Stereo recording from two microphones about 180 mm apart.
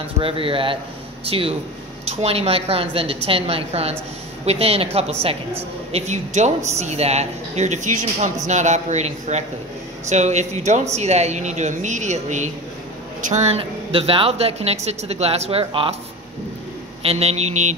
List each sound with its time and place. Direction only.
0.2 s speech: 30° right (ahead or behind)
5.9 s speech: 35° right (ahead or behind)
17.0 s speech: 35° right (ahead or behind)